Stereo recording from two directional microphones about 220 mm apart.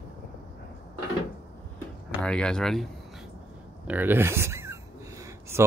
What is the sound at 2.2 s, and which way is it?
Speech, 5° left (ahead or behind).